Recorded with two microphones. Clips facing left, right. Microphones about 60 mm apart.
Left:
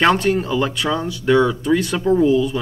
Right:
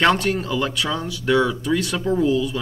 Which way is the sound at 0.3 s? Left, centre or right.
Centre.